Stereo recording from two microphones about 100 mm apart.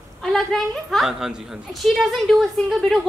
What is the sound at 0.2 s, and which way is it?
A woman's voice, centre (ahead or behind).